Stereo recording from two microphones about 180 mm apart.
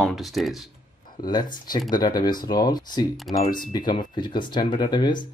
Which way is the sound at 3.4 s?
50° left (ahead or behind).